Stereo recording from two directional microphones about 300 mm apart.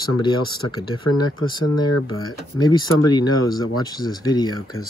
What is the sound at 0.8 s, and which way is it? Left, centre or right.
Speech, left.